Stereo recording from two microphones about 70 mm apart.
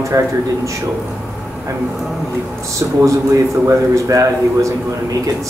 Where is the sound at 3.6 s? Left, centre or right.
Right.